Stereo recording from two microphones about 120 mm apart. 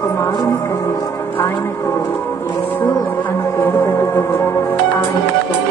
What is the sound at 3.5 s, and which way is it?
Music, 25° left (ahead or behind).